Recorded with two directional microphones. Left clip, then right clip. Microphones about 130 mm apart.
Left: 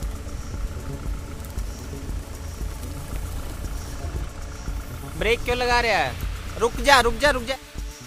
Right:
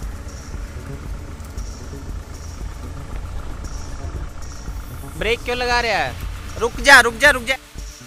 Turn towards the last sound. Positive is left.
turn(degrees=5)  # may be behind; listen again after turning